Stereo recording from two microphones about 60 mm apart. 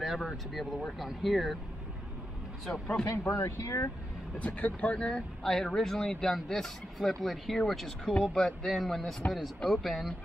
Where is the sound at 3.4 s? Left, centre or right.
Left.